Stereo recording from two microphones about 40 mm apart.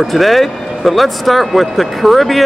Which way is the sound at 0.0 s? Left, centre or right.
Centre.